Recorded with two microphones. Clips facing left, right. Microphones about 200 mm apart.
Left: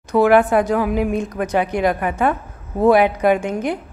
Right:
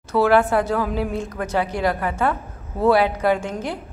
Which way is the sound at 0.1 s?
15° left (ahead or behind).